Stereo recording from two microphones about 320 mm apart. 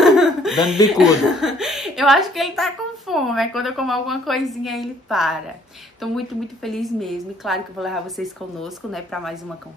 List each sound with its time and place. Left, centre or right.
0.0 s laughter: centre
0.9 s a woman's voice: centre